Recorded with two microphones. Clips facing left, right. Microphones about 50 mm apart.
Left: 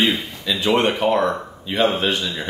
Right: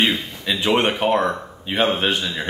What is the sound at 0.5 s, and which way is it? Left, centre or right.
Speech, right.